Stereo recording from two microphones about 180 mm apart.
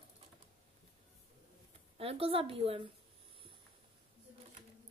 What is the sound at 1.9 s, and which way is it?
Speech, 35° right (ahead or behind).